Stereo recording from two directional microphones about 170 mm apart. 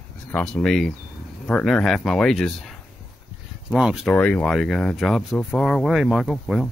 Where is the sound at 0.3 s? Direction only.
5° left (ahead or behind).